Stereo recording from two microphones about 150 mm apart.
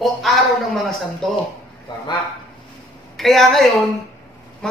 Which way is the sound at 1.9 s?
30° left (ahead or behind).